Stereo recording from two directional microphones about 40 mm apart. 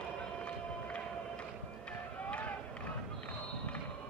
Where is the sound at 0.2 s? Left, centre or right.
Left.